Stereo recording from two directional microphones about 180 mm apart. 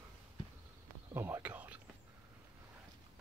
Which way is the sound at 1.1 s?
10° right (ahead or behind).